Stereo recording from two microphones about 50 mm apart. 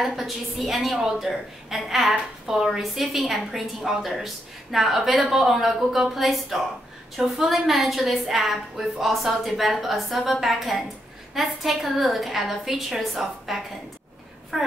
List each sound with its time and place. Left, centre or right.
0.0 s a woman's voice: centre